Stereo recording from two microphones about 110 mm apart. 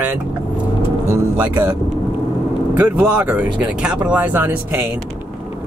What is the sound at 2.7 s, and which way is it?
Speech, 15° right (ahead or behind).